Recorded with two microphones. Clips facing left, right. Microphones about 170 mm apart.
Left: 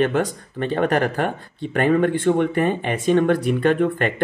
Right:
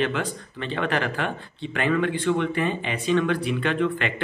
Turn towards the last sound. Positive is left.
turn(degrees=45)  # may be behind; listen again after turning